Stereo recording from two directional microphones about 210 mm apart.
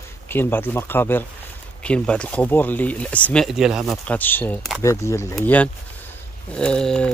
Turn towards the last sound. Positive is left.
turn(degrees=5)  # may be behind; listen again after turning